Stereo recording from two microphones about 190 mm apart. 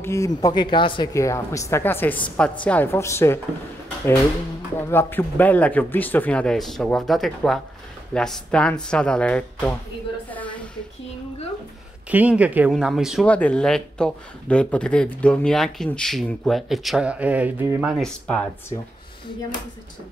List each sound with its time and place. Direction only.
0.0 s speech: 15° left (ahead or behind)
4.7 s speech: 10° left (ahead or behind)
10.3 s a sound: 5° left (ahead or behind)
12.1 s speech: 10° right (ahead or behind)
17.9 s speech: 5° left (ahead or behind)